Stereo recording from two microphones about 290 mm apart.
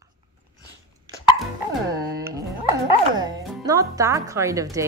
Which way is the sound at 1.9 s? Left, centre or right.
Centre.